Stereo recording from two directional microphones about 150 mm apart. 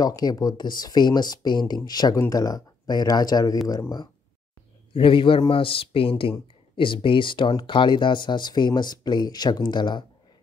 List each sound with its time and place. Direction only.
0.0 s speech: 25° left (ahead or behind)
4.9 s speech: 35° left (ahead or behind)